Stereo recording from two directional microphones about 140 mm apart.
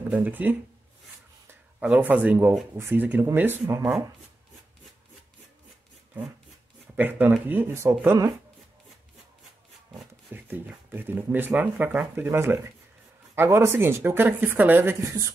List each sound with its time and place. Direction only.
0.1 s speech: 10° right (ahead or behind)
7.0 s speech: 15° right (ahead or behind)
10.3 s speech: 15° right (ahead or behind)